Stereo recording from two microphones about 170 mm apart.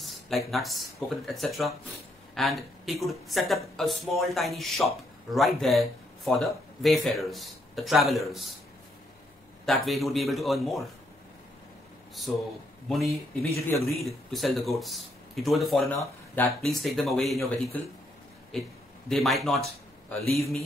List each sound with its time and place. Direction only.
0.0 s speech: centre (ahead or behind)
9.7 s speech: centre (ahead or behind)
12.8 s speech: centre (ahead or behind)
13.7 s a man's voice: 15° left (ahead or behind)
13.9 s speech: centre (ahead or behind)
15.9 s speech: 10° left (ahead or behind)
18.5 s speech: 5° left (ahead or behind)